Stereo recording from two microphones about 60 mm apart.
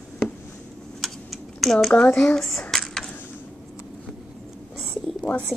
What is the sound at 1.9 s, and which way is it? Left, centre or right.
Speech, left.